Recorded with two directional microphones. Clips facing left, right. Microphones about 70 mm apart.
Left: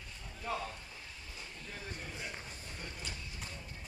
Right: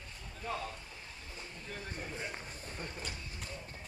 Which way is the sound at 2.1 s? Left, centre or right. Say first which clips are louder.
Right 2 dB; right.